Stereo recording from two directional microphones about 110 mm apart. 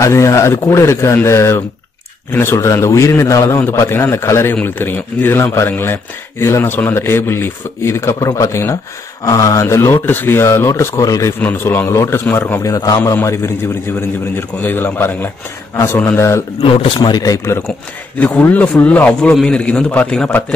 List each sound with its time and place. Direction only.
0.0 s a man's voice: 25° left (ahead or behind)
11.3 s a man's voice: 20° left (ahead or behind)
12.6 s a man's voice: 35° left (ahead or behind)
16.6 s a man's voice: 50° left (ahead or behind)
18.2 s speech: 15° left (ahead or behind)